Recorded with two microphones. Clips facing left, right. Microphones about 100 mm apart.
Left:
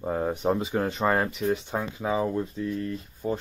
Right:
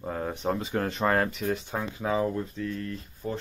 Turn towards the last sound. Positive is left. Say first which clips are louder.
# left 4 dB
turn(degrees=20)  # may be behind; listen again after turning